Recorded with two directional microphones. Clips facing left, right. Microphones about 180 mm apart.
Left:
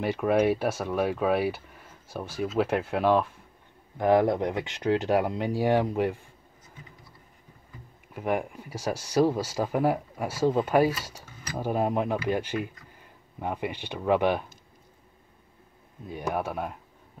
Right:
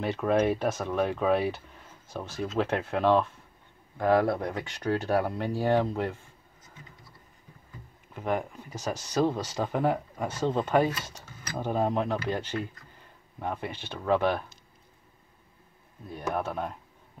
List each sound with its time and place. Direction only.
0.0 s speech: 10° left (ahead or behind)
8.1 s speech: 10° left (ahead or behind)
16.1 s speech: 15° left (ahead or behind)